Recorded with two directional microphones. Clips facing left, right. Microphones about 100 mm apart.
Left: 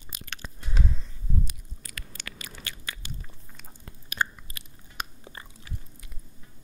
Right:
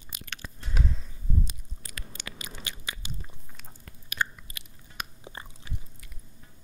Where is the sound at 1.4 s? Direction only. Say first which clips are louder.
Even; 25° right (ahead or behind).